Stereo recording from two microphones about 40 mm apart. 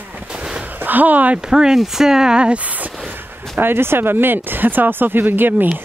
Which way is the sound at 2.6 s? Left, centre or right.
Right.